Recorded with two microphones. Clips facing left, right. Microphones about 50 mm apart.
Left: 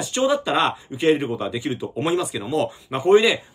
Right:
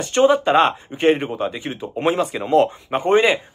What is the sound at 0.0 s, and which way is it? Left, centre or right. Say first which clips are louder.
Speech: right 5 dB; right.